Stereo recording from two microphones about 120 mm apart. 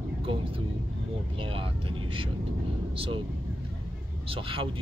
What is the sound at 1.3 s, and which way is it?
Speech, 50° right (ahead or behind).